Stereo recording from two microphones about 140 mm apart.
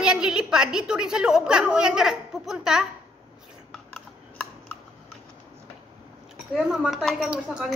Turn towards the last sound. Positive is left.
turn(degrees=-5)  # may be behind; listen again after turning